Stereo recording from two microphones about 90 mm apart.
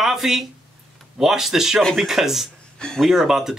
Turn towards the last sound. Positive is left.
turn(degrees=-5)  # may be behind; listen again after turning